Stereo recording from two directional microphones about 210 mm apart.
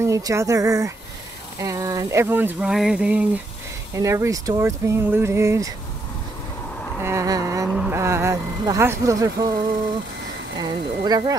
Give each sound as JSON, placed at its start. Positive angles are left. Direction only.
{"t": 0.0, "sound": "speech", "side_deg": -15}
{"t": 7.0, "sound": "a sound", "side_deg": -15}
{"t": 7.7, "sound": "speech", "side_deg": -5}
{"t": 10.6, "sound": "speech", "side_deg": -20}